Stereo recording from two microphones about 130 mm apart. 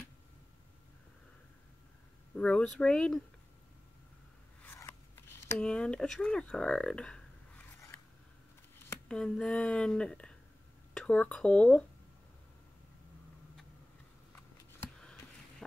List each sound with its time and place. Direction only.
2.3 s speech: 10° left (ahead or behind)
4.6 s scissors: 20° left (ahead or behind)
5.6 s speech: 5° left (ahead or behind)
9.1 s speech: 5° left (ahead or behind)